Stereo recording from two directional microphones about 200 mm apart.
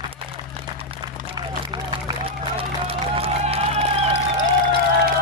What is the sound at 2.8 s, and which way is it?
Crowd, 30° right (ahead or behind).